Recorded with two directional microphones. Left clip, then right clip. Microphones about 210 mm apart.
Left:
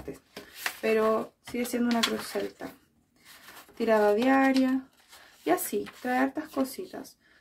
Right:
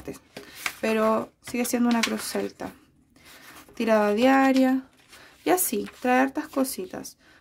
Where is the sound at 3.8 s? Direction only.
50° right (ahead or behind).